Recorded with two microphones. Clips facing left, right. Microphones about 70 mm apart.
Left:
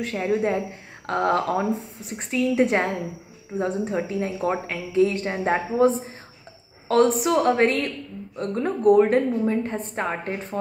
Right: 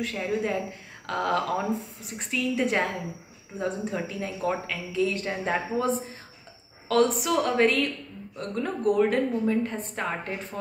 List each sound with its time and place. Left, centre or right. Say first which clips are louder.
0.0 s speech: left 5 dB; left
6.9 s a woman's voice: left 4 dB; left